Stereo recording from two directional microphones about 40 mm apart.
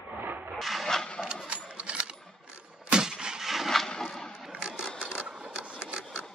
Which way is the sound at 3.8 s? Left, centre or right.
Centre.